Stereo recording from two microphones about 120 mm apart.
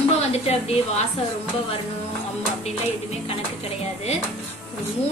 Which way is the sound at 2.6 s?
60° left (ahead or behind).